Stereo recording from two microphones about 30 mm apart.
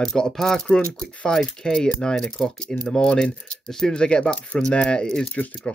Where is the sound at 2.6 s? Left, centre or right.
Left.